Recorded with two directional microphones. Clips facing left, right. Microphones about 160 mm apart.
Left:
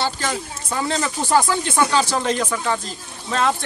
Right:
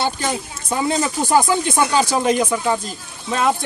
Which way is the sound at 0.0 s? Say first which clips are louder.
Right 2 dB; 15° right (ahead or behind).